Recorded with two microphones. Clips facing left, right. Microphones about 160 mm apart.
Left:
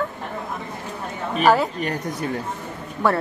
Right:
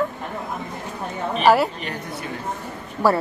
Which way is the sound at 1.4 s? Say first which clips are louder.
Right 1 dB; 5° right (ahead or behind).